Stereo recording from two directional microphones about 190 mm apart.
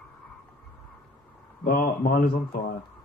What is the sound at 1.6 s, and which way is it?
Speech, 50° left (ahead or behind).